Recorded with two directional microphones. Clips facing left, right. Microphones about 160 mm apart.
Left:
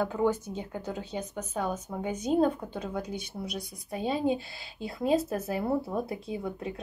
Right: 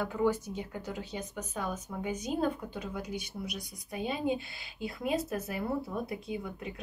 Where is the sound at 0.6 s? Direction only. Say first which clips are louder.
Left 3 dB; 25° left (ahead or behind).